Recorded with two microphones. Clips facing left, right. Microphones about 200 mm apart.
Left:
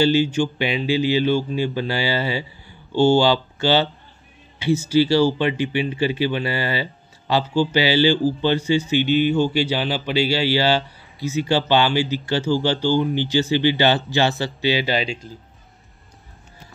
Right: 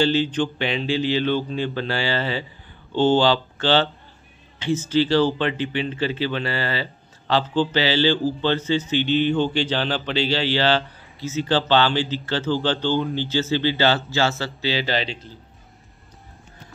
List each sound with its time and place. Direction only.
0.0 s speech: 10° left (ahead or behind)